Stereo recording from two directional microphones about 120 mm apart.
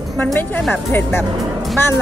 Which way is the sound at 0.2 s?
15° left (ahead or behind).